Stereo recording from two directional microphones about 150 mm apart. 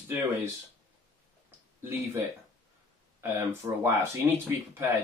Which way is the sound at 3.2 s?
15° right (ahead or behind).